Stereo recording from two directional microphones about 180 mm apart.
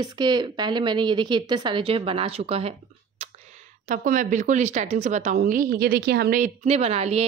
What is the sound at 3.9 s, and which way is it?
A woman's voice, 45° right (ahead or behind).